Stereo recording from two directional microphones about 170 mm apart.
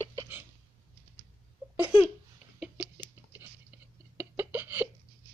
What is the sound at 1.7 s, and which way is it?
Laughter, 10° right (ahead or behind).